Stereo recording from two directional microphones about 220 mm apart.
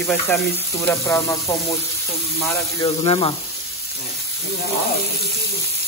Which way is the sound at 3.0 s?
25° left (ahead or behind).